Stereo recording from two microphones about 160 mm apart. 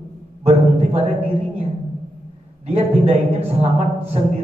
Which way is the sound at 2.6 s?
40° right (ahead or behind).